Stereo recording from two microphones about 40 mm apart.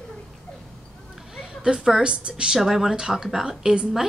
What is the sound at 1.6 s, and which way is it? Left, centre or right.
A woman's voice, centre.